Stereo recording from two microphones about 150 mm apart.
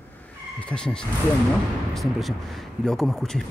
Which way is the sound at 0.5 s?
5° left (ahead or behind).